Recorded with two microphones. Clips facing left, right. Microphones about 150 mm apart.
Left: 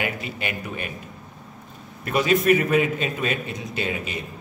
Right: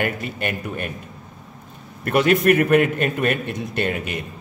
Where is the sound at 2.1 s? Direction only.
60° right (ahead or behind).